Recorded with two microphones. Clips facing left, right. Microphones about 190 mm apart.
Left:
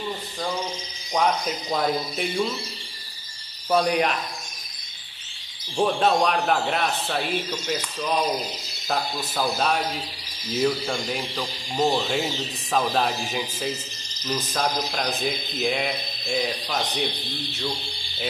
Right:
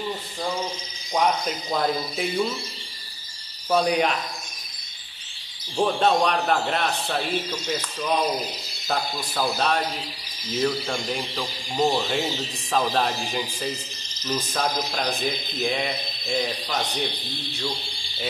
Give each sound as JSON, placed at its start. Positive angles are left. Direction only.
{"t": 1.7, "sound": "speech", "side_deg": 0}
{"t": 3.7, "sound": "speech", "side_deg": 0}
{"t": 5.8, "sound": "speech", "side_deg": 0}
{"t": 8.8, "sound": "speech", "side_deg": 0}